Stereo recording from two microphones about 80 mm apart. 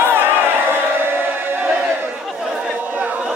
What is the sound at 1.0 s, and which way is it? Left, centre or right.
Music, right.